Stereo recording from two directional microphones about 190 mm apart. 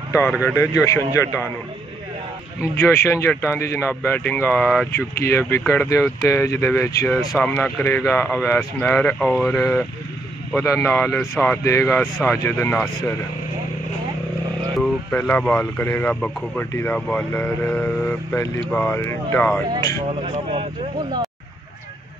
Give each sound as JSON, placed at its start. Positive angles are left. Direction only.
{"t": 0.3, "sound": "speech", "side_deg": 0}
{"t": 0.9, "sound": "speech", "side_deg": 15}
{"t": 2.6, "sound": "speech", "side_deg": 10}
{"t": 10.6, "sound": "speech", "side_deg": 15}
{"t": 14.8, "sound": "speech", "side_deg": 10}
{"t": 19.7, "sound": "speech", "side_deg": -30}